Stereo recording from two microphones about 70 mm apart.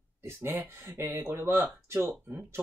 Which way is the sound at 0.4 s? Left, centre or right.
Right.